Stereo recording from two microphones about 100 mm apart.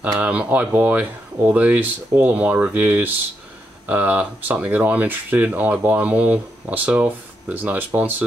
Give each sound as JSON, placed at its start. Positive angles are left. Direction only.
{"t": 0.2, "sound": "speech", "side_deg": -15}